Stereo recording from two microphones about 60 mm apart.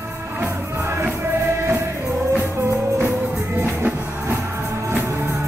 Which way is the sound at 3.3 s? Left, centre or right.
Right.